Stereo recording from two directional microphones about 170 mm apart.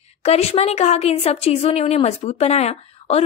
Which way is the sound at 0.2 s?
40° left (ahead or behind).